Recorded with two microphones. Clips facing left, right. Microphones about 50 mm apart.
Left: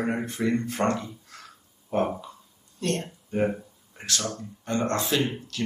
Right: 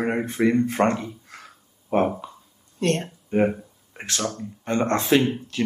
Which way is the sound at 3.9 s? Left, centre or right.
Right.